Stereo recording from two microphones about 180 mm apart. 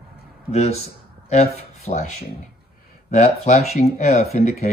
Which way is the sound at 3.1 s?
40° left (ahead or behind).